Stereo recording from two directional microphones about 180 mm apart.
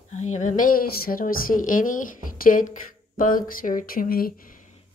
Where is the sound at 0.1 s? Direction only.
40° left (ahead or behind).